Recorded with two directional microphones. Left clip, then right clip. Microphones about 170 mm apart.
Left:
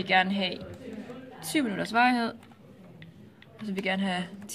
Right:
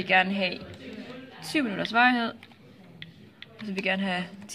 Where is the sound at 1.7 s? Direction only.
5° right (ahead or behind).